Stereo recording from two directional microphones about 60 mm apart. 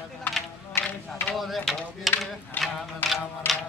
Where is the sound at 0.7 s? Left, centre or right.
Left.